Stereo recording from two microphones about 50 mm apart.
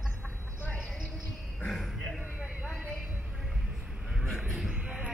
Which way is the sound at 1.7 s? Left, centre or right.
Centre.